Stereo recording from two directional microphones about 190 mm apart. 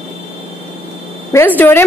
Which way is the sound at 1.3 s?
10° left (ahead or behind).